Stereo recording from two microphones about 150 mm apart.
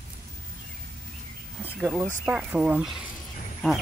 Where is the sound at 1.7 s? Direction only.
5° right (ahead or behind).